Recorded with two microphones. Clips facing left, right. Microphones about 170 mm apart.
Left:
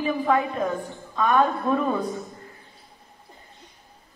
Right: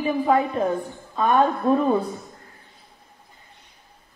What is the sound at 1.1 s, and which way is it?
Speech, 30° right (ahead or behind).